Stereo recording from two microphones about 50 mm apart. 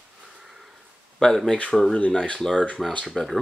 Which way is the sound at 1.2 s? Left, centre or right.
Centre.